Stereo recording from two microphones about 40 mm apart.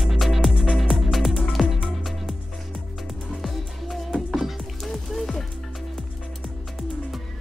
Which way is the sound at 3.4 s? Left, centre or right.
Centre.